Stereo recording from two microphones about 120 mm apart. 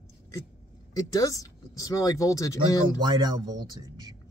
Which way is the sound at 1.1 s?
30° left (ahead or behind).